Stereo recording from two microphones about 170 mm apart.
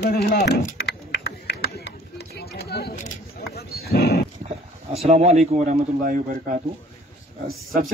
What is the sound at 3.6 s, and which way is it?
Dog, 65° left (ahead or behind).